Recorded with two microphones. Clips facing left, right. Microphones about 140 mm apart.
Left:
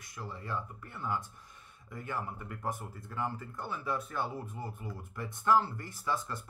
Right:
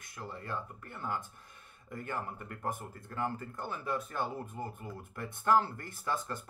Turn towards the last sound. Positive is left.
turn(degrees=-50)  # may be behind; listen again after turning